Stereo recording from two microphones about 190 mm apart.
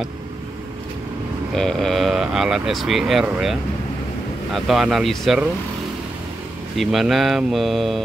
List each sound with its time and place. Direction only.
1.5 s speech: centre (ahead or behind)
4.6 s speech: centre (ahead or behind)
6.8 s speech: centre (ahead or behind)